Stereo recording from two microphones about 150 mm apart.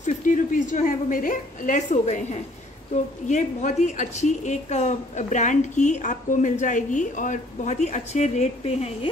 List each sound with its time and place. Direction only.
0.0 s a woman's voice: 55° left (ahead or behind)